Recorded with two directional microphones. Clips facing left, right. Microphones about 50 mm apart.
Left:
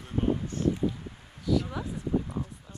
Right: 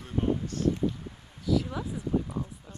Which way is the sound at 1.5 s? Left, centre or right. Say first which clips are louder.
Even; centre.